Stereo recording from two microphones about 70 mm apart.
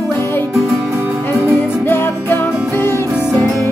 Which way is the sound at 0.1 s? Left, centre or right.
Left.